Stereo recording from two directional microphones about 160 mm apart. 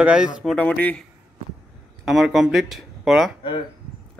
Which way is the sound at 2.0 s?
Centre (ahead or behind).